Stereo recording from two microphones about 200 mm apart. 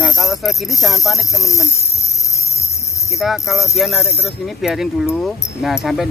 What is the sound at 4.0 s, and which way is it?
Speech, 10° left (ahead or behind).